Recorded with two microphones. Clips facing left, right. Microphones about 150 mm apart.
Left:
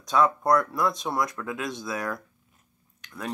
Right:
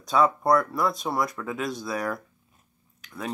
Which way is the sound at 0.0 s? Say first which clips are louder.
Right 1 dB; centre (ahead or behind).